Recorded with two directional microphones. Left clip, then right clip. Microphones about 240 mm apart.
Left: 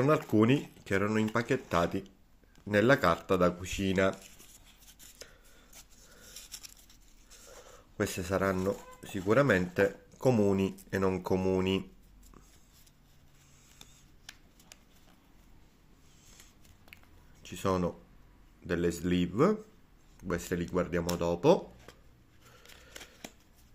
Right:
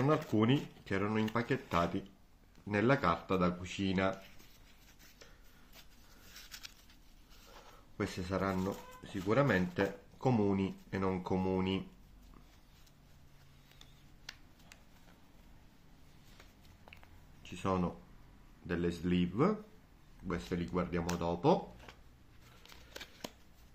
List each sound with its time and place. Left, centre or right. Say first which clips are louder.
0.0 s speech: left 5 dB; left
8.0 s speech: left 6 dB; left
17.4 s speech: left 5 dB; left